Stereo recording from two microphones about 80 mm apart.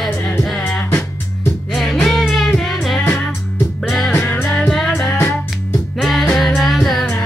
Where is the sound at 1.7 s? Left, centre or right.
Centre.